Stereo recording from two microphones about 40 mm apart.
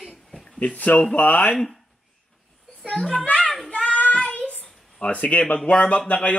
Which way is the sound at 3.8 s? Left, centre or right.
Left.